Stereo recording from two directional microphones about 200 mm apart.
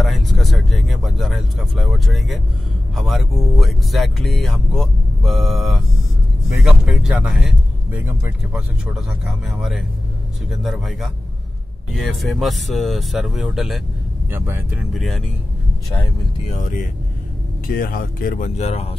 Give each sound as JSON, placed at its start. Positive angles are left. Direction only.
{"t": 0.0, "sound": "speech", "side_deg": 0}
{"t": 16.4, "sound": "speech", "side_deg": 35}
{"t": 17.6, "sound": "speech", "side_deg": 45}